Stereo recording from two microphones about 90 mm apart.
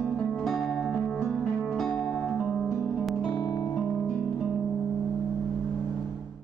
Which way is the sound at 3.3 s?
45° left (ahead or behind).